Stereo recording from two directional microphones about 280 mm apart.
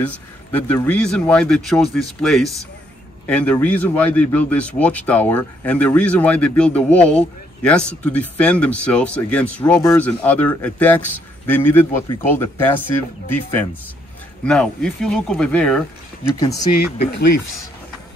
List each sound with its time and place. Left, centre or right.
0.0 s a man's voice: centre